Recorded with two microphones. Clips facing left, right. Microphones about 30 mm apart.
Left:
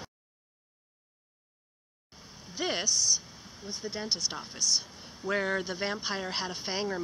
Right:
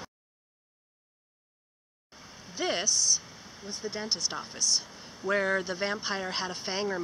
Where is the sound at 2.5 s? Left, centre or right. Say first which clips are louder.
Right 1 dB; centre.